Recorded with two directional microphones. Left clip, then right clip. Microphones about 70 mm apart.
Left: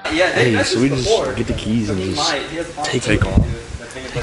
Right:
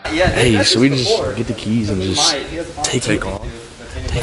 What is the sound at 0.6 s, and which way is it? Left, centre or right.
Speech, right.